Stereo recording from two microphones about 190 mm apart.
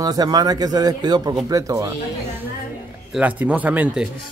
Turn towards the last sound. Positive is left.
turn(degrees=-5)  # may be behind; listen again after turning